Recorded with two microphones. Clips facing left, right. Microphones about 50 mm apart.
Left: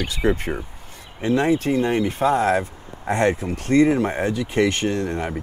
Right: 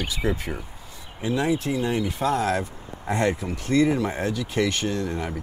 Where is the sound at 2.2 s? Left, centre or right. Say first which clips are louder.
Left 5 dB; left.